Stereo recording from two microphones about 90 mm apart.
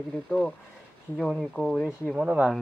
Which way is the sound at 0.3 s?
10° left (ahead or behind).